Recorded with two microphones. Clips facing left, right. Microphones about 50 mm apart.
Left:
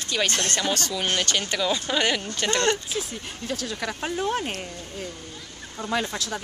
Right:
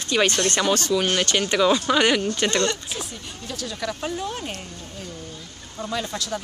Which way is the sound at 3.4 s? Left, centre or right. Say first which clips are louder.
Even; left.